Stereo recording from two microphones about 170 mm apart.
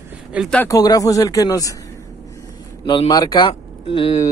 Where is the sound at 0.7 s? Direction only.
20° left (ahead or behind).